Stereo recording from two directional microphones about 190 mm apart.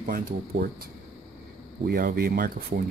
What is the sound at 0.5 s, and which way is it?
Speech, 75° right (ahead or behind).